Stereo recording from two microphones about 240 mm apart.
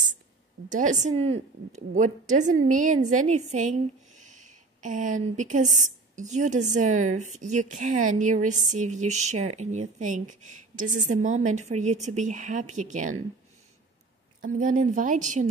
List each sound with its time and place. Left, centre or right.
0.7 s speech: right
14.4 s speech: right